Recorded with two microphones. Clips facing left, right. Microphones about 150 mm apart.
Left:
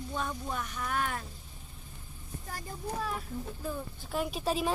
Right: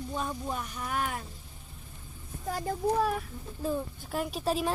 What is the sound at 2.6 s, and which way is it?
Speech, 75° right (ahead or behind).